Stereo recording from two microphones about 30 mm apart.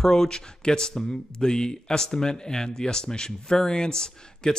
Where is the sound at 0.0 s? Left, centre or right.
Centre.